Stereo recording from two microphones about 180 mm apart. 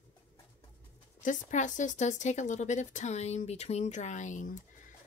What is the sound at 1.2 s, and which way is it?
Speech, 45° left (ahead or behind).